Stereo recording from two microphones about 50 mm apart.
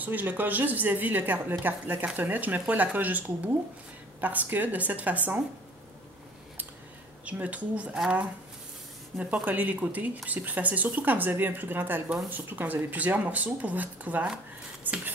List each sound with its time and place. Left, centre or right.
0.0 s speech: right
7.2 s speech: right
9.2 s speech: right
14.8 s a sound: right